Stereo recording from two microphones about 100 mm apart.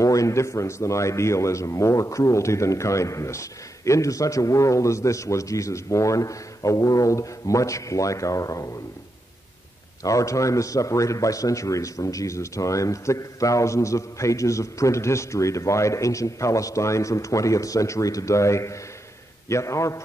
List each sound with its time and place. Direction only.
0.0 s a man's voice: 35° left (ahead or behind)
10.0 s a man's voice: 35° left (ahead or behind)